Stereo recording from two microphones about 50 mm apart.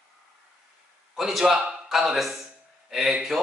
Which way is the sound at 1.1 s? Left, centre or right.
Centre.